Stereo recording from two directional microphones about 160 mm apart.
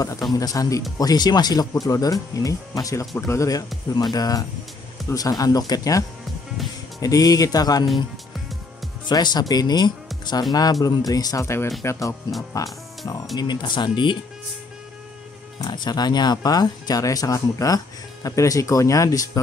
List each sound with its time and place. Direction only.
0.3 s speech: 20° left (ahead or behind)
9.0 s speech: 25° left (ahead or behind)
15.6 s speech: 25° left (ahead or behind)